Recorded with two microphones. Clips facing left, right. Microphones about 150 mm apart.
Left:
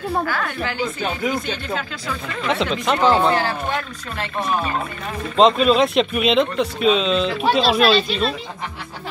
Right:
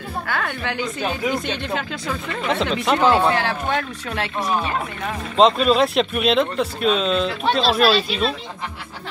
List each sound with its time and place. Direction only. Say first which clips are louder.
0.3 s a woman's voice: left 1 dB; 65° right (ahead or behind)
2.4 s speech: even; centre (ahead or behind)
3.4 s speech: right 1 dB; 70° right (ahead or behind)
5.4 s speech: left 1 dB; centre (ahead or behind)